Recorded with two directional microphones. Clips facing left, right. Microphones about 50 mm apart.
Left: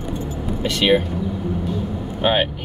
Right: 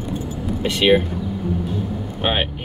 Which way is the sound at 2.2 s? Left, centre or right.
Centre.